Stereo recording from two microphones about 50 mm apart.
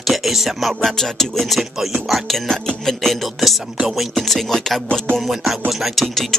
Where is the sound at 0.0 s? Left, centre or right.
Centre.